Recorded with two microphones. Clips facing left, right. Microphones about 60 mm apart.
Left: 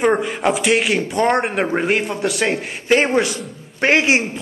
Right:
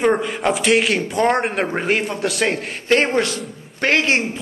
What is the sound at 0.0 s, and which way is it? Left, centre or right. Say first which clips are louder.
A man's voice: left 1 dB; centre.